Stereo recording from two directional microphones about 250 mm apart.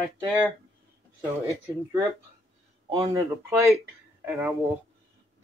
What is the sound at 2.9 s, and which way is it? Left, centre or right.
Speech, centre.